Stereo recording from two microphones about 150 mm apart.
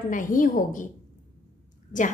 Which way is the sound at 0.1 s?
65° left (ahead or behind).